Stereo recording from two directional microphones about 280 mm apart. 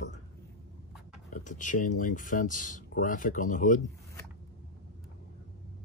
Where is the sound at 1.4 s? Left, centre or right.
Left.